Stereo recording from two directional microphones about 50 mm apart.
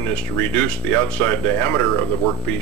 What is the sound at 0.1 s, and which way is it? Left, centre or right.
Speech, left.